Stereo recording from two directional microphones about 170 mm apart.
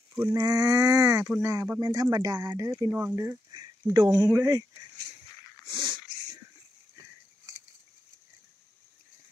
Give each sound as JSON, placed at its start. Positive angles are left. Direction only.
{"t": 0.1, "sound": "speech", "side_deg": -25}
{"t": 5.7, "sound": "dog", "side_deg": -30}